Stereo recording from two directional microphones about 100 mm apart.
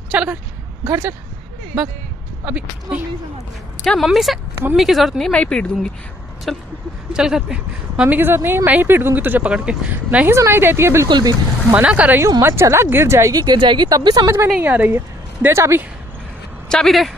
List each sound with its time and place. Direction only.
0.1 s a woman's voice: 10° right (ahead or behind)
2.4 s speech: 15° right (ahead or behind)
3.8 s speech: centre (ahead or behind)
5.3 s speech: 10° left (ahead or behind); by 10.3 s 15° right (ahead or behind)
10.3 s a woman's voice: 25° right (ahead or behind)
11.1 s speech: 45° right (ahead or behind)
11.7 s speech: 10° right (ahead or behind)
12.2 s speech: 30° right (ahead or behind)
14.6 s a woman's voice: 20° right (ahead or behind)
16.6 s speech: 5° left (ahead or behind)